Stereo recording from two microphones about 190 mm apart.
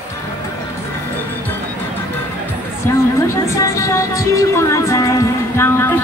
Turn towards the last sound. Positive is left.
turn(degrees=10)  # may be behind; listen again after turning